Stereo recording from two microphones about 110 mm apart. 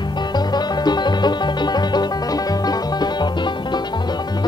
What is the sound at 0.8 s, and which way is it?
Music, 40° left (ahead or behind).